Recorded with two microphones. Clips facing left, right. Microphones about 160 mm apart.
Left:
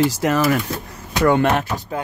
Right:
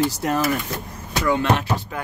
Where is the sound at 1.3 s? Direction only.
60° left (ahead or behind).